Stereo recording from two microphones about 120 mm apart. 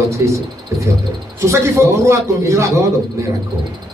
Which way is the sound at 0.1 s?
25° right (ahead or behind).